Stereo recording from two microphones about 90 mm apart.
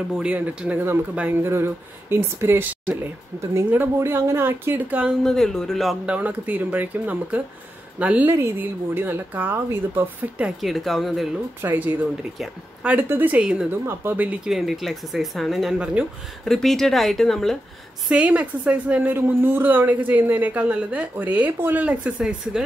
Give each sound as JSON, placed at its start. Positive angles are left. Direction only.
{"t": 0.2, "sound": "a woman's voice", "side_deg": -15}
{"t": 1.4, "sound": "speech", "side_deg": -25}
{"t": 5.2, "sound": "speech", "side_deg": 5}
{"t": 6.0, "sound": "a woman's voice", "side_deg": -15}
{"t": 10.4, "sound": "speech", "side_deg": 0}
{"t": 11.6, "sound": "a woman's voice", "side_deg": -20}
{"t": 13.7, "sound": "speech", "side_deg": -25}
{"t": 14.5, "sound": "speech", "side_deg": 0}
{"t": 15.8, "sound": "a woman's voice", "side_deg": -10}
{"t": 16.4, "sound": "speech", "side_deg": 5}
{"t": 18.0, "sound": "a woman's voice", "side_deg": -10}